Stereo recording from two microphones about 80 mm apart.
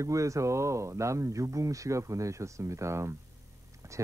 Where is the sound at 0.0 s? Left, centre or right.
Right.